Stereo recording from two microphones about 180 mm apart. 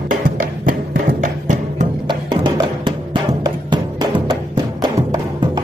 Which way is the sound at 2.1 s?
25° right (ahead or behind).